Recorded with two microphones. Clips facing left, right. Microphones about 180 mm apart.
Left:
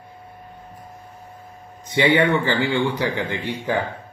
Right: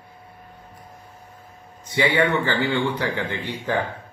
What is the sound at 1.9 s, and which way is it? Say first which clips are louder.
A man's voice: left 3 dB; 20° left (ahead or behind).